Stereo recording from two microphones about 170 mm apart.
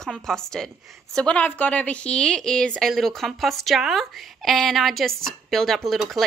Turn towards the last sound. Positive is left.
turn(degrees=0)  # may be behind; listen again after turning